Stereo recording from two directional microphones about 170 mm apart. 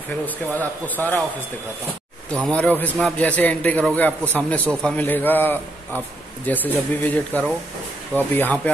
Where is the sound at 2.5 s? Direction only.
10° left (ahead or behind).